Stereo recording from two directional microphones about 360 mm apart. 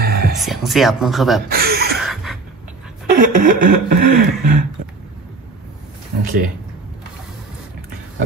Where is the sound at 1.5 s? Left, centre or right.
Right.